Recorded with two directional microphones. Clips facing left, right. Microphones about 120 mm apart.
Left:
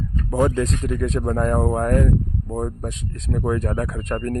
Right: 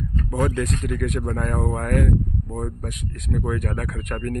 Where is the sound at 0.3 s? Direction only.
30° left (ahead or behind).